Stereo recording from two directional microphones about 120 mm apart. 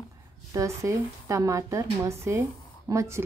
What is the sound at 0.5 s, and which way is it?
A woman's voice, 25° right (ahead or behind).